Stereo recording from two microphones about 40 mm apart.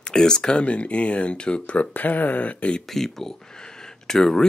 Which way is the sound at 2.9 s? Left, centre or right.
Centre.